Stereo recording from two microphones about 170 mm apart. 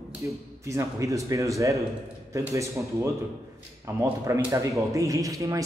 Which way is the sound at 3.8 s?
15° right (ahead or behind).